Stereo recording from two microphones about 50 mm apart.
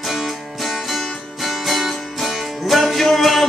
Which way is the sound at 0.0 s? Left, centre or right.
Centre.